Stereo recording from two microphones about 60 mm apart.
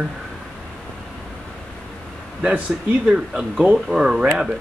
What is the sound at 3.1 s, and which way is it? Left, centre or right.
Speech, centre.